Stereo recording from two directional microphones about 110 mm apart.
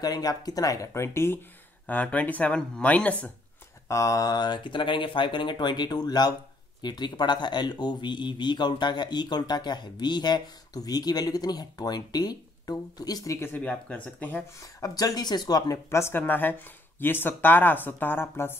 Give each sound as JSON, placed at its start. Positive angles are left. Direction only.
{"t": 0.0, "sound": "speech", "side_deg": 35}
{"t": 3.9, "sound": "speech", "side_deg": 30}
{"t": 13.6, "sound": "speech", "side_deg": 10}
{"t": 14.6, "sound": "speech", "side_deg": 35}